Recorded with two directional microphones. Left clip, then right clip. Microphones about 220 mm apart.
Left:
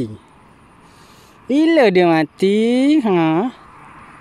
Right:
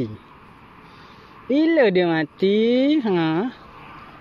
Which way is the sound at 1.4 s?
25° left (ahead or behind).